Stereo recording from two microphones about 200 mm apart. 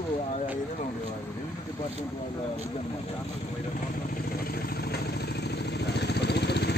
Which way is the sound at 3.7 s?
45° left (ahead or behind).